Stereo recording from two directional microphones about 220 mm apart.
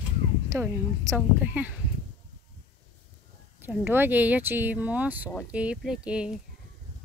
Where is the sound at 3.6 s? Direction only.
10° right (ahead or behind).